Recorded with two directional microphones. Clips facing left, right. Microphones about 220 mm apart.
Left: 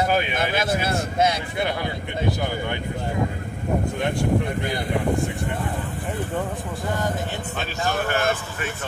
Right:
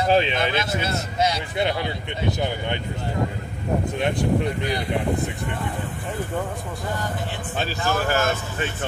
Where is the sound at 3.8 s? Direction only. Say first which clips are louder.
Right 1 dB; 20° right (ahead or behind).